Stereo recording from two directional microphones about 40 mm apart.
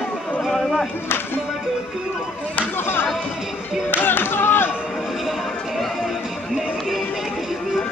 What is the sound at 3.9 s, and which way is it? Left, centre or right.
Music, left.